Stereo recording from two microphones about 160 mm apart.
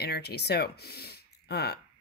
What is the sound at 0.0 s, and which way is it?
Speech, 90° left.